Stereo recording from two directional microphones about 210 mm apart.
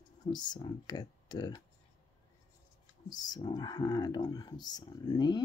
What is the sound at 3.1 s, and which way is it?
Speech, 20° left (ahead or behind).